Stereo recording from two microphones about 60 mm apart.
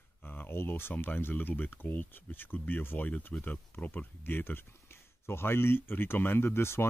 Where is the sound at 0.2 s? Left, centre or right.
Left.